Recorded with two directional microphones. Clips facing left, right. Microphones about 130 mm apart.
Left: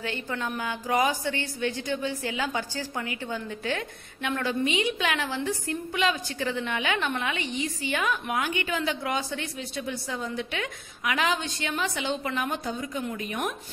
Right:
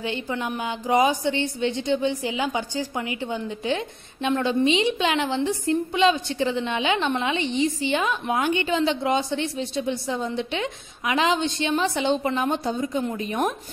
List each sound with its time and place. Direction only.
0.0 s a woman's voice: 20° right (ahead or behind)